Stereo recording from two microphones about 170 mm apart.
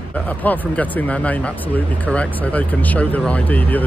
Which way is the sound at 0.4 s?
10° left (ahead or behind).